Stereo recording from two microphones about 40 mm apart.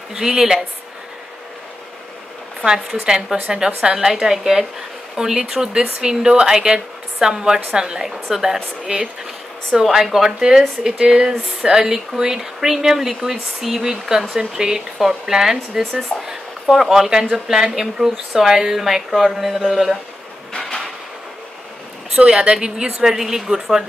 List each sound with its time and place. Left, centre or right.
0.1 s speech: centre
2.6 s speech: centre
9.8 s speech: centre
22.1 s a woman's voice: right